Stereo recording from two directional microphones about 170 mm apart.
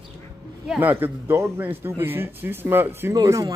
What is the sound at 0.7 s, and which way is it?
A man's voice, 10° right (ahead or behind).